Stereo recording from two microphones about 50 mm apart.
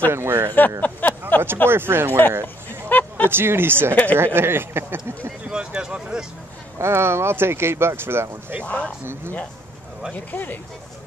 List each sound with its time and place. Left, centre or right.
0.1 s speech: right
0.6 s speech: left
1.7 s speech: right
2.9 s a sound: left
3.3 s speech: right
3.9 s speech: left
4.4 s speech: right
5.5 s speech: centre
6.8 s speech: right
8.6 s speech: left
9.0 s speech: right
10.1 s speech: left